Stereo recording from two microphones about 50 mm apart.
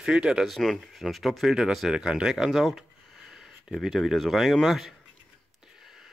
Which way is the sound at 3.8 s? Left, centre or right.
Centre.